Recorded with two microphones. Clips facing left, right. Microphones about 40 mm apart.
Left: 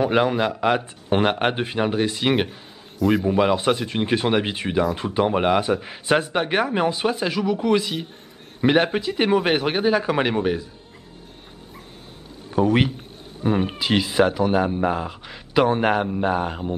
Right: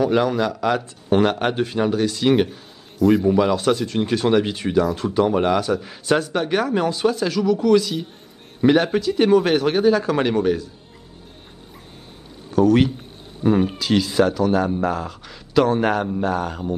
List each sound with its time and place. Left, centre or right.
0.0 s speech: left
3.0 s a man's voice: centre
3.3 s speech: left
12.5 s speech: left
13.4 s speech: centre
13.7 s speech: left